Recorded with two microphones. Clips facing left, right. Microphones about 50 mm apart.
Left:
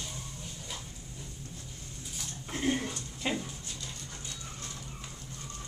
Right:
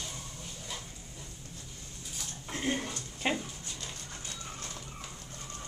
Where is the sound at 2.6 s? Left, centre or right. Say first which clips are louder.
Left 2 dB; centre.